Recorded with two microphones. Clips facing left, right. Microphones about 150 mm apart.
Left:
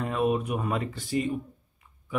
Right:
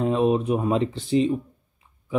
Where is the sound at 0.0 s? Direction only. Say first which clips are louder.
Right 6 dB; 30° right (ahead or behind).